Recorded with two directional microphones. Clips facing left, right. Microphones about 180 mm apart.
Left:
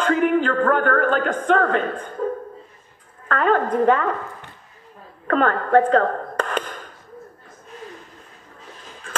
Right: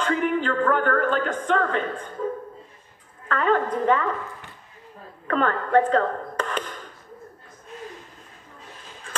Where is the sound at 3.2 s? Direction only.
55° left (ahead or behind).